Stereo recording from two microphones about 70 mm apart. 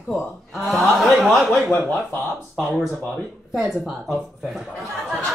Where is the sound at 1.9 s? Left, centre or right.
Left.